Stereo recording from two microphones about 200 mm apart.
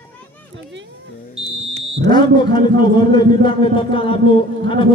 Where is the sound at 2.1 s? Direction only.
20° left (ahead or behind).